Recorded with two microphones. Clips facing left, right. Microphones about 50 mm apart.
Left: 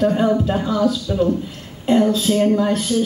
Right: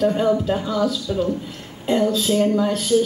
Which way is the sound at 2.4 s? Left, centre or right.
Centre.